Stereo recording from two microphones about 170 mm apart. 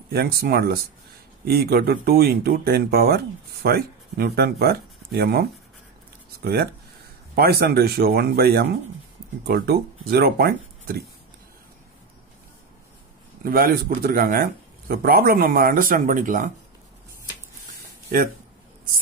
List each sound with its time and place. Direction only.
0.1 s speech: 65° right (ahead or behind)
13.4 s speech: 60° right (ahead or behind)